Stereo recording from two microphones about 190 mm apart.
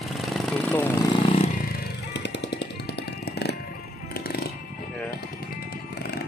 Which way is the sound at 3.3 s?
60° left (ahead or behind).